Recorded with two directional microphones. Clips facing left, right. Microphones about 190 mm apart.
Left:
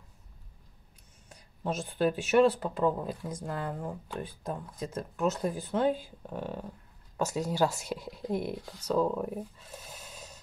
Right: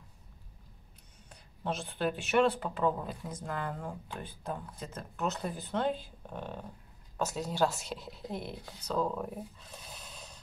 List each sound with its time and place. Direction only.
1.3 s a sound: 10° left (ahead or behind)
1.9 s speech: 10° left (ahead or behind)
8.3 s speech: 50° left (ahead or behind)
8.8 s speech: 10° left (ahead or behind)